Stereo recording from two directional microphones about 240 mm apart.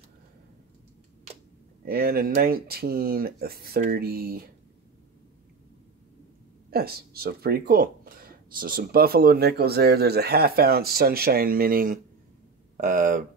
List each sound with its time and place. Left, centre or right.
1.9 s speech: right
6.7 s speech: right